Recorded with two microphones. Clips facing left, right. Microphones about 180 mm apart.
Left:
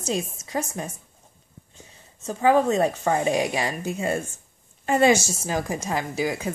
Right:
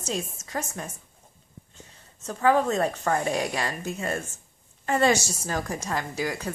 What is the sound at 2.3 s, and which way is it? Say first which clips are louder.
A woman's voice: left 3 dB; 15° left (ahead or behind).